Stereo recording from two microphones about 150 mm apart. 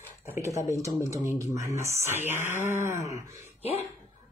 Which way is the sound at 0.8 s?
20° right (ahead or behind).